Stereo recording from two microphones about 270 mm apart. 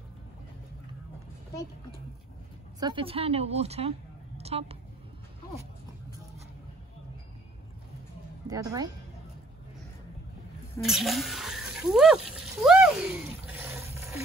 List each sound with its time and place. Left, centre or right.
2.8 s a woman's voice: centre
8.5 s a woman's voice: centre
10.9 s a sound: centre